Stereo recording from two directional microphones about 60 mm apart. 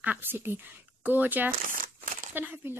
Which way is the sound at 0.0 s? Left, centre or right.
Right.